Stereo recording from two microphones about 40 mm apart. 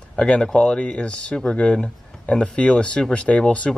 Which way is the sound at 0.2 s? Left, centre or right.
Left.